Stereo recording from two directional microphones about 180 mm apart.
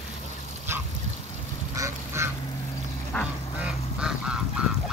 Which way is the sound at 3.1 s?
10° left (ahead or behind).